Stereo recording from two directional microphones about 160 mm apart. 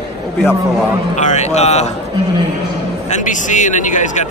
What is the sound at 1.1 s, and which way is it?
Speech, 50° left (ahead or behind).